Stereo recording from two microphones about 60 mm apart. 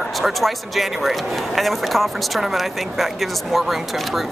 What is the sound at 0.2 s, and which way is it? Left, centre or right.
Speech, centre.